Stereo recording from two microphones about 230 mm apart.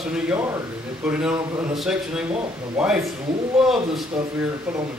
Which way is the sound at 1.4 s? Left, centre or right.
Centre.